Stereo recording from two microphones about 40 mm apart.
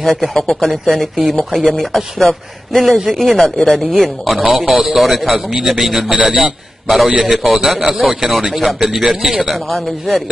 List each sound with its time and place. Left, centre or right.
0.0 s speech: centre
5.9 s a man's voice: centre
6.4 s a man's voice: centre